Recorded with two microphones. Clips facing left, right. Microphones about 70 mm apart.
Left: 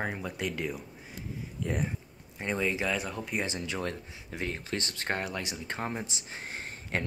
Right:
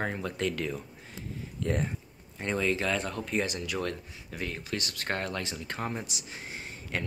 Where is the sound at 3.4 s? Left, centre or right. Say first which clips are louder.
Even; left.